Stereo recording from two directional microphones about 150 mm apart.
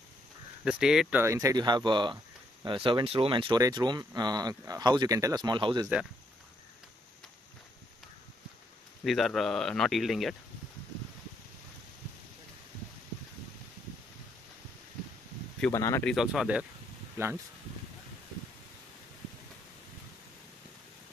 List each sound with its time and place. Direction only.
0.7 s speech: 5° right (ahead or behind)
1.2 s speech: 20° right (ahead or behind)
9.0 s speech: centre (ahead or behind)
15.7 s speech: 20° left (ahead or behind)
16.1 s speech: centre (ahead or behind)
17.2 s speech: 15° right (ahead or behind)